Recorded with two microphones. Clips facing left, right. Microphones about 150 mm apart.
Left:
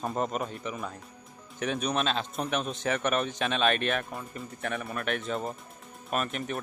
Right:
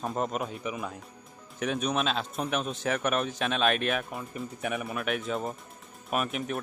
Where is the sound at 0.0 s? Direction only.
Centre (ahead or behind).